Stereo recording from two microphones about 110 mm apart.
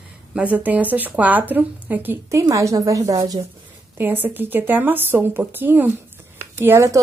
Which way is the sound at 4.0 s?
15° right (ahead or behind).